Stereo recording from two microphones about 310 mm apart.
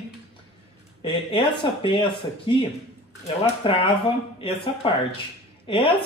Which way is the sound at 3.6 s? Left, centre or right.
Centre.